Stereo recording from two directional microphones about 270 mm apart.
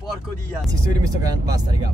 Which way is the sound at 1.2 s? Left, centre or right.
Centre.